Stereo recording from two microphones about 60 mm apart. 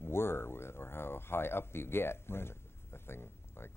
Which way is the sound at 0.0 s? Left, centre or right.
Left.